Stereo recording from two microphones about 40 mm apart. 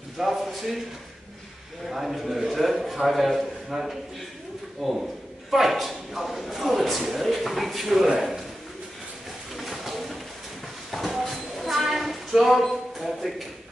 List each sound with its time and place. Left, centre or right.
0.2 s speech: centre
1.9 s a man's voice: centre
8.2 s bird: centre
9.6 s pigeon: centre
10.9 s a sound: centre